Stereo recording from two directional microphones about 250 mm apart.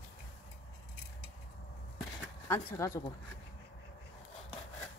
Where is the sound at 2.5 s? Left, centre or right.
Centre.